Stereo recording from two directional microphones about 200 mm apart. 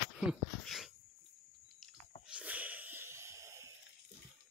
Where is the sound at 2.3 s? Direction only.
5° right (ahead or behind).